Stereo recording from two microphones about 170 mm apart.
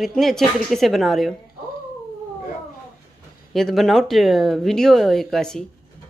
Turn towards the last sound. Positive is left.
turn(degrees=5)  # may be behind; listen again after turning